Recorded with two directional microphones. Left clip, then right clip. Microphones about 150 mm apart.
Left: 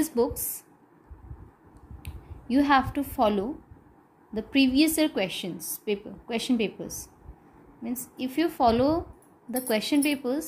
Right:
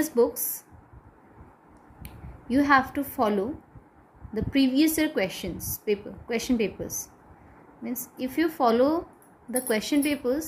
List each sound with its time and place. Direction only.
0.0 s a woman's voice: 30° left (ahead or behind)
2.0 s a woman's voice: 30° left (ahead or behind)